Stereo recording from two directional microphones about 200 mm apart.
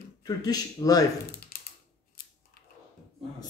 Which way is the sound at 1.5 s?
50° left (ahead or behind).